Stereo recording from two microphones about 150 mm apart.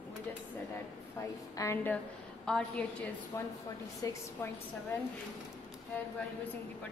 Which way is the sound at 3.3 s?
20° left (ahead or behind).